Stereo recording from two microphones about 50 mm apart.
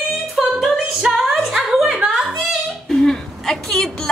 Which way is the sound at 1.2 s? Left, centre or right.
Centre.